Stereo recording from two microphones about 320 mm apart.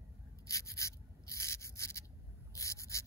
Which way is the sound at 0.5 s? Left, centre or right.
Centre.